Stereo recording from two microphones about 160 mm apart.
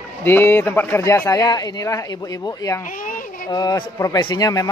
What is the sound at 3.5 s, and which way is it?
A man's voice, 25° left (ahead or behind).